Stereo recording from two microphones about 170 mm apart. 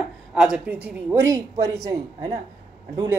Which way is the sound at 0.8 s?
20° right (ahead or behind).